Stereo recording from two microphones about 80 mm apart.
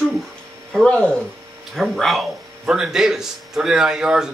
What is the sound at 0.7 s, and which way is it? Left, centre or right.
A man's voice, centre.